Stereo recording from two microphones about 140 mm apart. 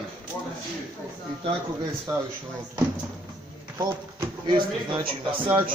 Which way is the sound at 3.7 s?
30° right (ahead or behind).